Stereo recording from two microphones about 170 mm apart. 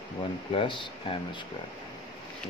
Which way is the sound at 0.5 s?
30° left (ahead or behind).